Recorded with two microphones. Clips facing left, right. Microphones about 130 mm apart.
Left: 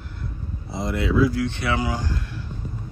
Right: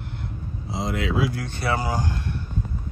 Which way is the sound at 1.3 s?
40° right (ahead or behind).